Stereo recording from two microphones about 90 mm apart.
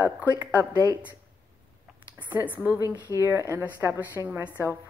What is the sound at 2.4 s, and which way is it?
Speech, 20° right (ahead or behind).